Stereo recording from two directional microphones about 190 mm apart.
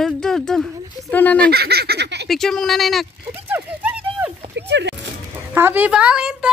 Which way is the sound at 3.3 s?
10° right (ahead or behind).